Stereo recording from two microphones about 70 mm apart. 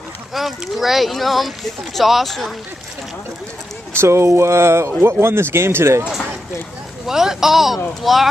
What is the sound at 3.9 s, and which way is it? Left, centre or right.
Speech, right.